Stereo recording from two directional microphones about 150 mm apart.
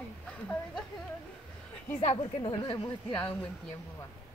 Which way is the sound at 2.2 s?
35° left (ahead or behind).